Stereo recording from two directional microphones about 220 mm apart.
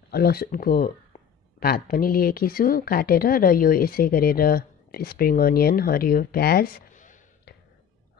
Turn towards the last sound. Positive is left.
turn(degrees=35)  # may be behind; listen again after turning